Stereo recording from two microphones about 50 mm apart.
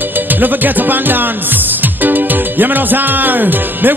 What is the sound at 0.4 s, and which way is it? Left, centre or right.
Music, right.